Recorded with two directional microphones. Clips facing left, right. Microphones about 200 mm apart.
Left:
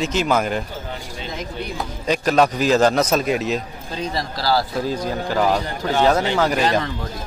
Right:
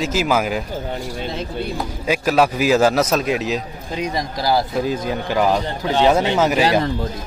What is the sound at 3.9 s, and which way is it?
A man's voice, 20° right (ahead or behind).